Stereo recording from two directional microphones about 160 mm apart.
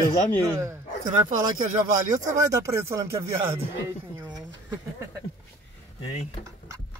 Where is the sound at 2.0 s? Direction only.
55° right (ahead or behind).